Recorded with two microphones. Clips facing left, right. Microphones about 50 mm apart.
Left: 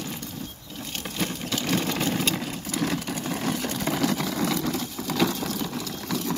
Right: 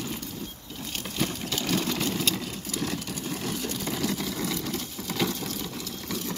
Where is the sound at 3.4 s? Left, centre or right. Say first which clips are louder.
Left 5 dB; left.